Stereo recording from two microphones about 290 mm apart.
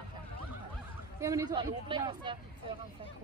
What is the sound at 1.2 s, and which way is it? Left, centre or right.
Speech, centre.